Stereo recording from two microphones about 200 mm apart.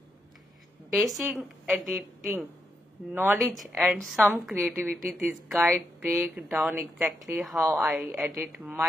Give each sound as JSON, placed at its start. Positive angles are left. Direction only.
{"t": 0.9, "sound": "a woman's voice", "side_deg": 0}
{"t": 3.3, "sound": "a woman's voice", "side_deg": 0}